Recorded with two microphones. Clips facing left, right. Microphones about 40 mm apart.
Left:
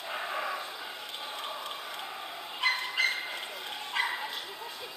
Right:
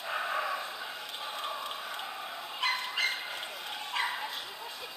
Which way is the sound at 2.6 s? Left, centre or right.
Left.